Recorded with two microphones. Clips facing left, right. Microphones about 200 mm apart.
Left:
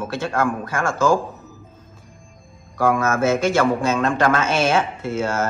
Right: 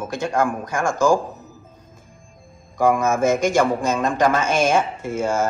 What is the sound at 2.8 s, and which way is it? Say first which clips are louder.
Speech: right 1 dB; 15° right (ahead or behind).